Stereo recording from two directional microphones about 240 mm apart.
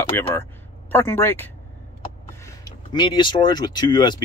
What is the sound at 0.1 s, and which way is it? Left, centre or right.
Speech, centre.